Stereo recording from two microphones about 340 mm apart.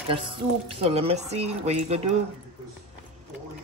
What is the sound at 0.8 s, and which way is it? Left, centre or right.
Speech, centre.